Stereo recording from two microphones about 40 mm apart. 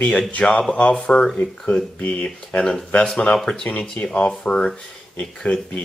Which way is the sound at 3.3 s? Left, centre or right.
Left.